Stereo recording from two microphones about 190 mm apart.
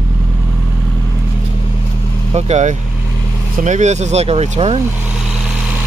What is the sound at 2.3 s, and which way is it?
Speech, 35° right (ahead or behind).